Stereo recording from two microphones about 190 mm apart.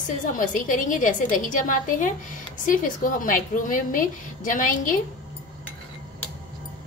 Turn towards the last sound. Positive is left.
turn(degrees=45)  # may be behind; listen again after turning